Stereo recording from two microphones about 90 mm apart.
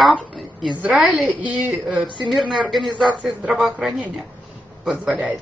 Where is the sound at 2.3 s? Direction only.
Centre (ahead or behind).